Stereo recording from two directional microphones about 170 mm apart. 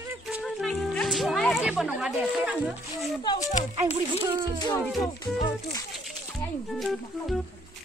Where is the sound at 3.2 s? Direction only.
25° left (ahead or behind).